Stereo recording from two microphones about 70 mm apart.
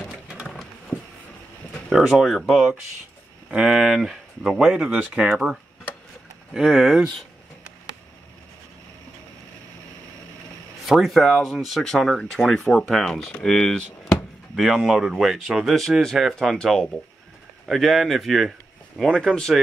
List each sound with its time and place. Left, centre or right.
0.0 s horse: centre
1.9 s speech: centre
10.9 s speech: centre
19.0 s speech: centre